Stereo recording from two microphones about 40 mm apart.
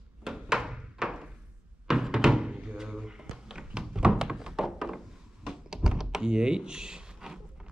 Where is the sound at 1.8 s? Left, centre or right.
Centre.